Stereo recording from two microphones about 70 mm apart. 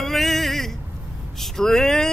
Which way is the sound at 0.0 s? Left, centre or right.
Centre.